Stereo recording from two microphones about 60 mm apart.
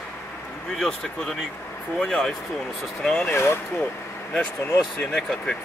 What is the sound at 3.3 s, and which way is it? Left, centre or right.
Speech, left.